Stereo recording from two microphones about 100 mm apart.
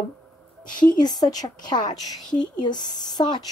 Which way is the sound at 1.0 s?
45° left (ahead or behind).